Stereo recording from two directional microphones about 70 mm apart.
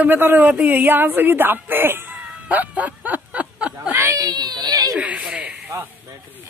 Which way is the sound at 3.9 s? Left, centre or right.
Right.